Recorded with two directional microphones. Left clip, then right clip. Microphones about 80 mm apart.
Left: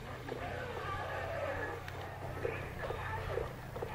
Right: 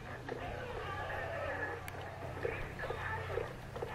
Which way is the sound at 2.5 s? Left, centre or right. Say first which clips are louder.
Even; right.